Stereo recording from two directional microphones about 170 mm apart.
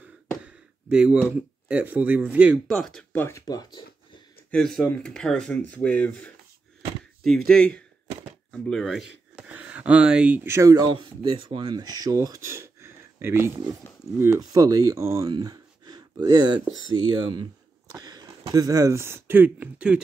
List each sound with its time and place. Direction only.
0.8 s speech: 5° right (ahead or behind); by 3.8 s 20° left (ahead or behind)
4.5 s speech: 5° left (ahead or behind)